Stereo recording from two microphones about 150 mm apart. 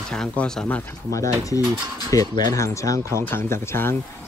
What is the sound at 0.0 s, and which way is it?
Speech, 5° left (ahead or behind).